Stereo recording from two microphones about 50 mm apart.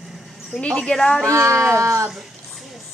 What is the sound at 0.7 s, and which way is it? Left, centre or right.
Speech, centre.